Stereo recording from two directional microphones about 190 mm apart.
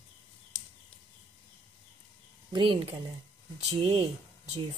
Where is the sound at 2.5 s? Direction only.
25° right (ahead or behind).